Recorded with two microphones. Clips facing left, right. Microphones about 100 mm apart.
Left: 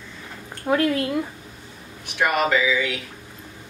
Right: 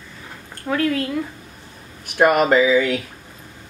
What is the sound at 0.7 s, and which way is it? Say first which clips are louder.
Speech: left 2 dB; 20° left (ahead or behind).